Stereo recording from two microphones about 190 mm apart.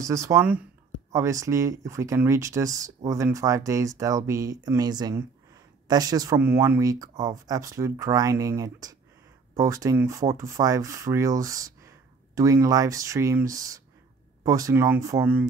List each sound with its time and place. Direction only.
0.0 s speech: 15° right (ahead or behind)